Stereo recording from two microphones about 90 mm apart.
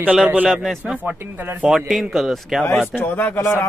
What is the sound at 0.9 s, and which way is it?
Speech, 20° right (ahead or behind).